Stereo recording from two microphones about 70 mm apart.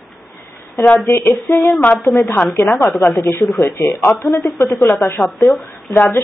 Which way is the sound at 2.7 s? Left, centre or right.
Left.